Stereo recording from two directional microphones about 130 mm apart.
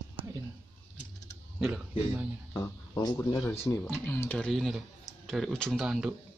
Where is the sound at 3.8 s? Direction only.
10° left (ahead or behind).